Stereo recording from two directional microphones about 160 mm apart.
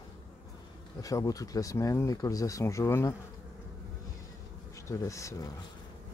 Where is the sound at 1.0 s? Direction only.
20° left (ahead or behind).